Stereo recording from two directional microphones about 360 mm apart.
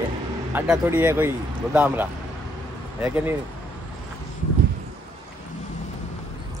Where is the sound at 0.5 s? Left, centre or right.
Centre.